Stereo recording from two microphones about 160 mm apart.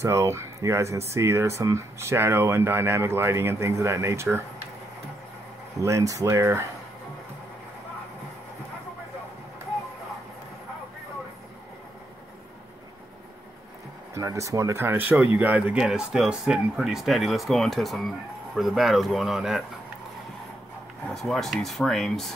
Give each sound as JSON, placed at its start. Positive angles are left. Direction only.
{"t": 0.0, "sound": "speech", "side_deg": -20}
{"t": 5.8, "sound": "speech", "side_deg": -20}
{"t": 14.1, "sound": "speech", "side_deg": -20}
{"t": 21.1, "sound": "speech", "side_deg": 0}